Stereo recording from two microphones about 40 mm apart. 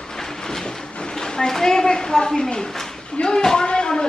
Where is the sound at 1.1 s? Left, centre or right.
Centre.